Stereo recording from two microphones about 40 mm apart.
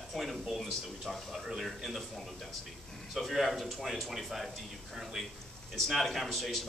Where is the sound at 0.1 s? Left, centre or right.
Centre.